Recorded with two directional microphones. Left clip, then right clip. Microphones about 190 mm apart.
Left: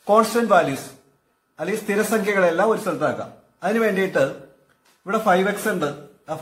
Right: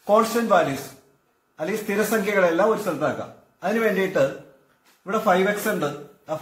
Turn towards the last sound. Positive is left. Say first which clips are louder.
# even
turn(degrees=15)  # may be behind; listen again after turning